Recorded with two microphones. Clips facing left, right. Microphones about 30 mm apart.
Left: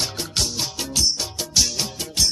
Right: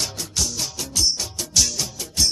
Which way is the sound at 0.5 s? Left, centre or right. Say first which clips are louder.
Left 1 dB; left.